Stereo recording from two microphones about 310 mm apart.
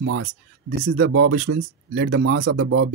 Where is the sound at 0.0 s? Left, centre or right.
Right.